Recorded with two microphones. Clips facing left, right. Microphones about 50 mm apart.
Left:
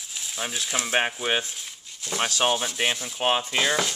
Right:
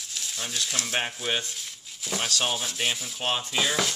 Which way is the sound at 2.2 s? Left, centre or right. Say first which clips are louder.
Left 5 dB; centre.